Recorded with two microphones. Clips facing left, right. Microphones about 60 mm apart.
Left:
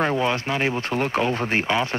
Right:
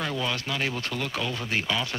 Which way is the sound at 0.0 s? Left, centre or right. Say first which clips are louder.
Left 8 dB; left.